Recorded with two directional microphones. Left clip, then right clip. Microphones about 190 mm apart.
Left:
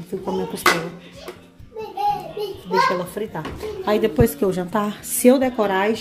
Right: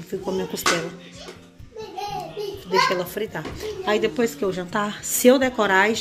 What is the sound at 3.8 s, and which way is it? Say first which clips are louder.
A woman's voice: left 3 dB; 15° left (ahead or behind).